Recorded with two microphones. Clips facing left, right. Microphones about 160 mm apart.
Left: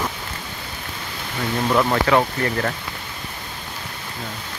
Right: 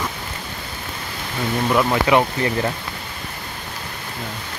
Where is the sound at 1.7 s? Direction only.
5° right (ahead or behind).